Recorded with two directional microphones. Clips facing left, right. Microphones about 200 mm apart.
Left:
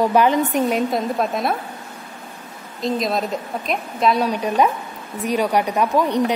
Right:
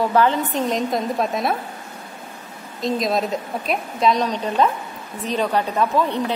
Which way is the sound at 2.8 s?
Centre (ahead or behind).